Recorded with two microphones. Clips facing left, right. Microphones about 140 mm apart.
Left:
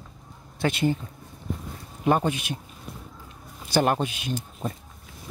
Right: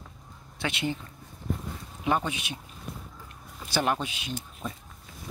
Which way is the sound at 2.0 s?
45° left (ahead or behind).